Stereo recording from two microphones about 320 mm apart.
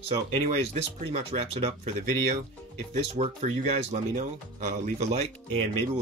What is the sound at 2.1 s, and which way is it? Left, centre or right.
Speech, right.